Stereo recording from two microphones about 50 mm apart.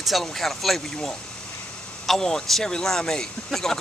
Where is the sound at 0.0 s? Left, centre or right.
Centre.